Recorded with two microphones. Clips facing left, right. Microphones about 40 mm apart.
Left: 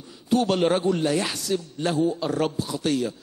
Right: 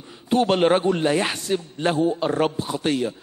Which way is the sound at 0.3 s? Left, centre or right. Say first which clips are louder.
Right 3 dB; right.